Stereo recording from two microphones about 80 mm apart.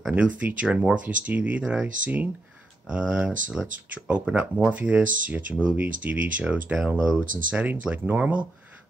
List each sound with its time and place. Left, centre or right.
0.1 s speech: centre